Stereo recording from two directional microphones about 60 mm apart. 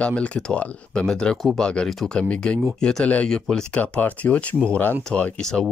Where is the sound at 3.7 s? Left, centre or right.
Left.